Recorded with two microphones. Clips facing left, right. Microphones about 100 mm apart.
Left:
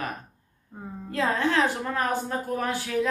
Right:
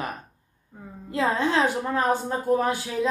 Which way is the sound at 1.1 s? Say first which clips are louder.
Right 1 dB; 20° right (ahead or behind).